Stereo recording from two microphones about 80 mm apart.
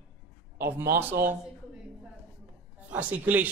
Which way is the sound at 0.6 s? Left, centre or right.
Right.